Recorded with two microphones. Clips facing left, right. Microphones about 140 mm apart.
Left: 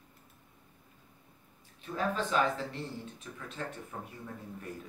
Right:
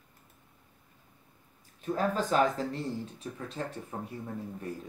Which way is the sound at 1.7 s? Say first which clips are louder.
Right 4 dB; 40° right (ahead or behind).